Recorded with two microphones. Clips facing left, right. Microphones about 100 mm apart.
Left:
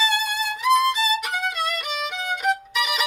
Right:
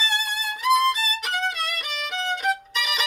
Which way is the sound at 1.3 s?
5° left (ahead or behind).